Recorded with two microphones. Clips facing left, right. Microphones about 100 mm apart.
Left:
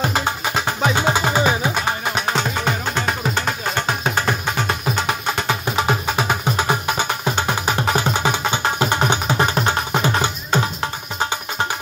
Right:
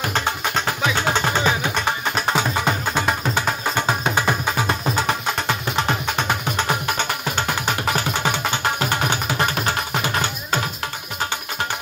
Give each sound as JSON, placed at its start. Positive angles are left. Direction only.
{"t": 0.9, "sound": "music", "side_deg": 15}
{"t": 2.3, "sound": "music", "side_deg": -10}